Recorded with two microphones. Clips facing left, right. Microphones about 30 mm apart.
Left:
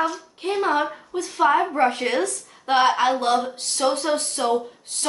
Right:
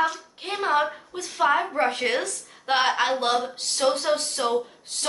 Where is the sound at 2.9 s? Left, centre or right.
Centre.